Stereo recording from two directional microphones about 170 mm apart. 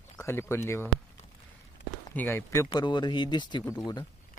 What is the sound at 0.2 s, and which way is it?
Speech, 15° left (ahead or behind).